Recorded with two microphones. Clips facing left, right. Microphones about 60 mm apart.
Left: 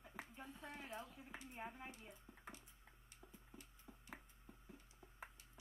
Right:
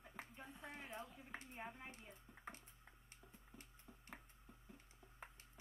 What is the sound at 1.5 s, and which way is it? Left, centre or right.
Speech, centre.